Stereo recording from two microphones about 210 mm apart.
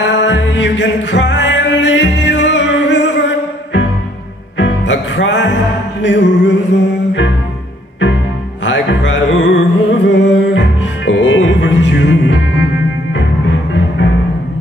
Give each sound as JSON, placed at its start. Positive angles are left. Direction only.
{"t": 0.1, "sound": "music", "side_deg": 60}
{"t": 4.6, "sound": "music", "side_deg": 60}
{"t": 8.6, "sound": "music", "side_deg": 60}